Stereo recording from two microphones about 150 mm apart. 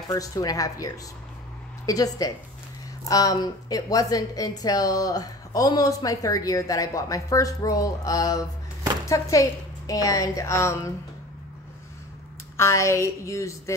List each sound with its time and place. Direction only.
0.1 s a woman's voice: 25° left (ahead or behind)
12.5 s a woman's voice: 20° left (ahead or behind)